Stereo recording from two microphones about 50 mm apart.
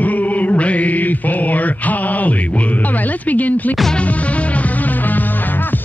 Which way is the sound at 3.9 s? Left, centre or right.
Left.